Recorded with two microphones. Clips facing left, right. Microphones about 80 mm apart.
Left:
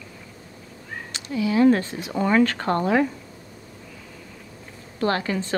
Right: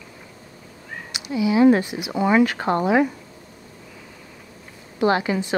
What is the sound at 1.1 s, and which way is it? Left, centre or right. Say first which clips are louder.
Speech: right 3 dB; centre.